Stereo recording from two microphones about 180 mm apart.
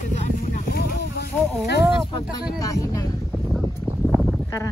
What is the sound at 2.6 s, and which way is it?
Speech, 20° left (ahead or behind).